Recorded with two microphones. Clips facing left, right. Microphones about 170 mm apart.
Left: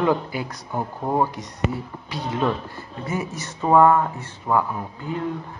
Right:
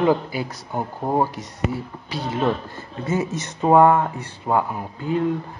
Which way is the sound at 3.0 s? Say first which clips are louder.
Right 5 dB; 20° right (ahead or behind).